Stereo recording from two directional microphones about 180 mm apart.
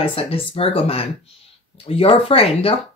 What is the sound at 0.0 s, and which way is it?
Speech, 30° left (ahead or behind).